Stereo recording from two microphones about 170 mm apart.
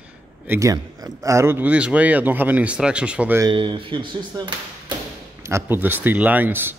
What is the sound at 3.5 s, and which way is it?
Speech, 30° right (ahead or behind).